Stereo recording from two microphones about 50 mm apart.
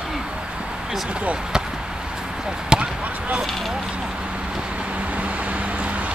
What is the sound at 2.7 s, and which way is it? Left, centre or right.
Basketball bounce, centre.